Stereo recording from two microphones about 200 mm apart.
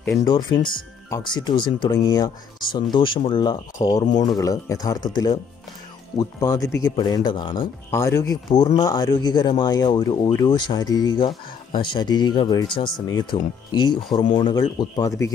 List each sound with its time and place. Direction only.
0.0 s speech: 15° left (ahead or behind)